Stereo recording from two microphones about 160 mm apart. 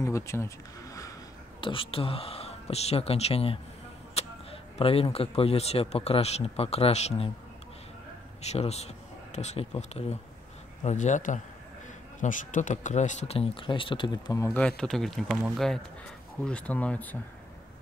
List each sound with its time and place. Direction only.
0.0 s a sound: 20° left (ahead or behind)
1.6 s speech: 35° left (ahead or behind)
8.4 s speech: 45° left (ahead or behind); by 14.6 s 20° left (ahead or behind)
14.6 s speech: 5° left (ahead or behind)